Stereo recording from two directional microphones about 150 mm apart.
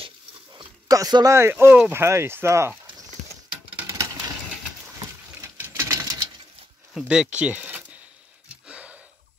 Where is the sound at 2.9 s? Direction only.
25° right (ahead or behind).